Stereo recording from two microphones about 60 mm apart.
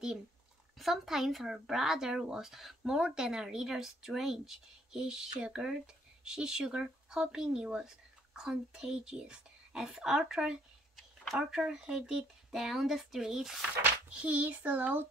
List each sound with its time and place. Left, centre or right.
0.7 s speech: centre
14.0 s speech: right